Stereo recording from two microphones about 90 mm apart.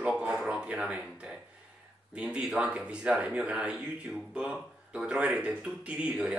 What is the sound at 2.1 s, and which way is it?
Speech, 10° right (ahead or behind).